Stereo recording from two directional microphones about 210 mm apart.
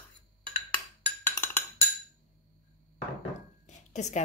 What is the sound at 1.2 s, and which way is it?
Wood block, 10° left (ahead or behind).